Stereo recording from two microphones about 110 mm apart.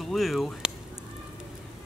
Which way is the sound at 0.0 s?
Centre (ahead or behind).